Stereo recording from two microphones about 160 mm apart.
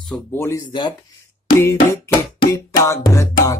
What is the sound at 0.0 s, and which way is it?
Speech, 10° left (ahead or behind).